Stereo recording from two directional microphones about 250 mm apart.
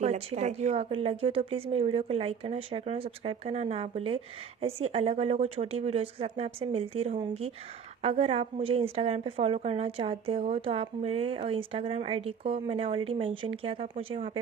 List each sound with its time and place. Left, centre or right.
0.0 s speech: right